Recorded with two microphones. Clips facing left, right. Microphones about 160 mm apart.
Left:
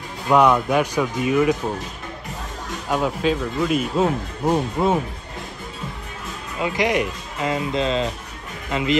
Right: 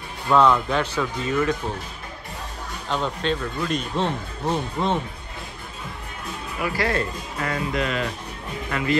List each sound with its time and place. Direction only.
0.3 s speech: 15° left (ahead or behind)
2.9 s speech: 5° left (ahead or behind)
6.6 s speech: 20° left (ahead or behind)